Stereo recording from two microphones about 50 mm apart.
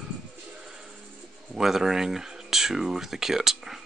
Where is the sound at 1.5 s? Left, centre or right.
Centre.